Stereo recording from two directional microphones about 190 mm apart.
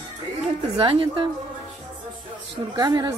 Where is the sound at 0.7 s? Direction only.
25° right (ahead or behind).